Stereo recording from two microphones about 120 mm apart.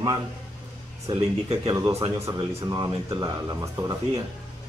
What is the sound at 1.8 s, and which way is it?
Speech, 30° right (ahead or behind).